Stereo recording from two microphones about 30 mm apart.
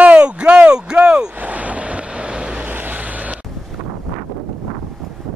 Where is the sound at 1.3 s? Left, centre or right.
Right.